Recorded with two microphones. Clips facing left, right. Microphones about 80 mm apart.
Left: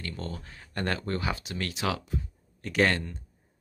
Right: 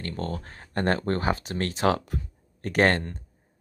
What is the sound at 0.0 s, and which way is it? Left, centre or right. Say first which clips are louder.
Speech: right 5 dB; right.